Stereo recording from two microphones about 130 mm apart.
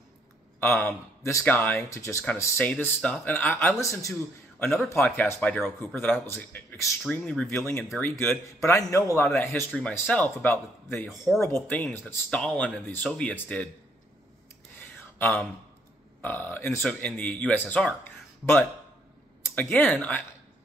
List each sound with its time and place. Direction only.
0.6 s speech: 20° left (ahead or behind)
2.6 s speech: 10° left (ahead or behind)
7.4 s speech: 20° left (ahead or behind)
12.3 s speech: 5° left (ahead or behind)
15.1 s speech: 15° left (ahead or behind)